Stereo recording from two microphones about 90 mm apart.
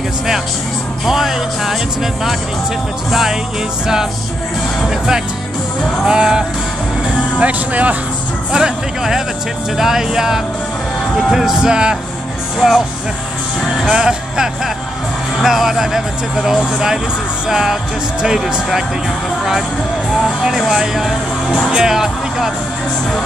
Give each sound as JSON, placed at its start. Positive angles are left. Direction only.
{"t": 1.0, "sound": "speech", "side_deg": -5}
{"t": 3.1, "sound": "speech", "side_deg": -5}
{"t": 20.2, "sound": "speech", "side_deg": 0}